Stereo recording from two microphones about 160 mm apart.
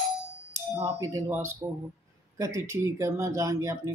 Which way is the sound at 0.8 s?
20° right (ahead or behind).